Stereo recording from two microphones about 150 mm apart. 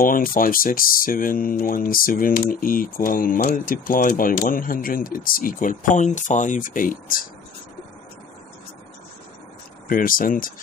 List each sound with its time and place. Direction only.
0.0 s speech: 70° left (ahead or behind)
9.8 s speech: 70° left (ahead or behind)